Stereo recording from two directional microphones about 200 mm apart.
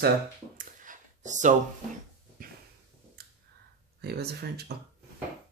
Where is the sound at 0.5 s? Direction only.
40° right (ahead or behind).